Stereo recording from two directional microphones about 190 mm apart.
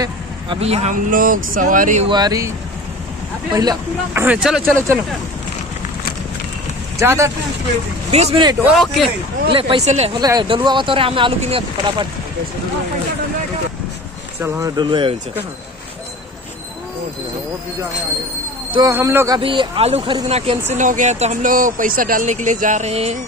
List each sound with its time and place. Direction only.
0.0 s speech: 30° right (ahead or behind)
1.1 s speech: 45° right (ahead or behind)
2.0 s speech: 20° right (ahead or behind)
3.5 s speech: 15° right (ahead or behind)
7.0 s speech: 15° right (ahead or behind)
8.1 s speech: 35° right (ahead or behind)
8.6 s a man's voice: centre (ahead or behind)
9.5 s speech: 30° right (ahead or behind)
10.1 s speech: 20° right (ahead or behind)
14.4 s speech: 20° right (ahead or behind)
18.7 s speech: 15° right (ahead or behind)
20.7 s speech: 40° right (ahead or behind)